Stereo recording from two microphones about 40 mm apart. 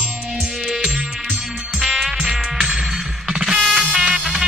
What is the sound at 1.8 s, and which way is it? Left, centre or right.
Music, centre.